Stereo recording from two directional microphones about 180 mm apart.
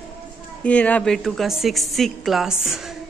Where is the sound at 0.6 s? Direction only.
10° left (ahead or behind).